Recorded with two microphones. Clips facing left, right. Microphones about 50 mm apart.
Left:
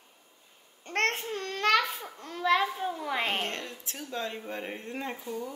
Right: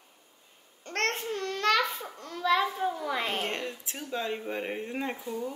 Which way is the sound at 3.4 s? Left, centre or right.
Centre.